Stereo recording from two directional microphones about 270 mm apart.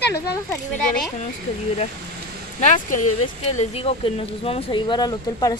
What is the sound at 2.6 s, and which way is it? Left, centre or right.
A woman's voice, left.